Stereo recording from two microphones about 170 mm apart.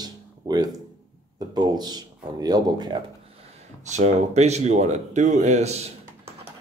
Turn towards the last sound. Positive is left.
turn(degrees=-40)  # may be behind; listen again after turning